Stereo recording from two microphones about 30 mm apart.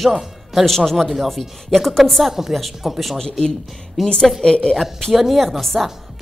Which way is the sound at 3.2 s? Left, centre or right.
Left.